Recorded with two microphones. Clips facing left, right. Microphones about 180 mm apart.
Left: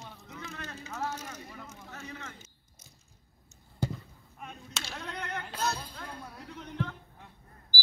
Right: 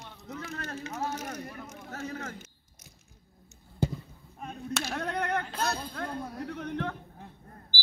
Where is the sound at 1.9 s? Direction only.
45° right (ahead or behind).